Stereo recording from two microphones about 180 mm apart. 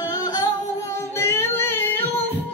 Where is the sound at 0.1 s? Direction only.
20° left (ahead or behind).